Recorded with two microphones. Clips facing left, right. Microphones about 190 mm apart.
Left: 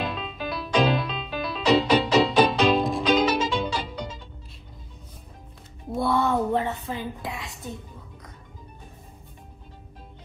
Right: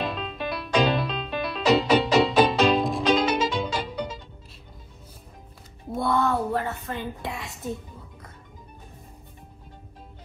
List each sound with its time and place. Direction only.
0.0 s music: centre (ahead or behind)
5.9 s music: centre (ahead or behind)
6.2 s a sound: 15° left (ahead or behind)
7.2 s music: centre (ahead or behind)